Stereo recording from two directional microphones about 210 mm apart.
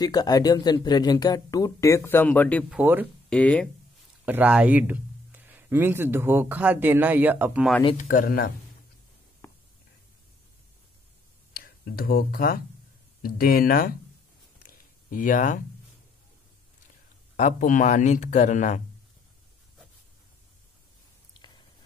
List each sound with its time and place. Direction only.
0.0 s speech: 20° left (ahead or behind)
2.7 s speech: 10° right (ahead or behind)
3.3 s speech: 5° left (ahead or behind)
4.3 s speech: 5° right (ahead or behind)
8.0 s speech: 40° left (ahead or behind)
11.5 s speech: 45° left (ahead or behind)
14.6 s a sound: 40° left (ahead or behind)
17.4 s speech: 35° left (ahead or behind)